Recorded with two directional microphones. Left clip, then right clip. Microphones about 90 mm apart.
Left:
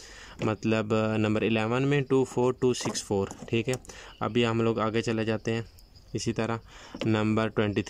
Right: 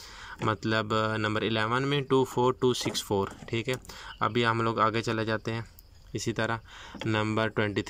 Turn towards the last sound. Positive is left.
turn(degrees=15)  # may be behind; listen again after turning